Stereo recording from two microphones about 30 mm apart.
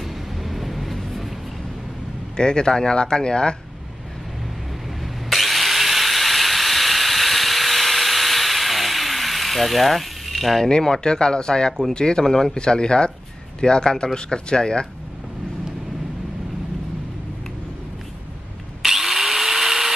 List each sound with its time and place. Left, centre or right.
0.0 s vehicle: centre
2.3 s speech: left
5.3 s wood: centre
10.8 s speech: left
18.8 s power tool: centre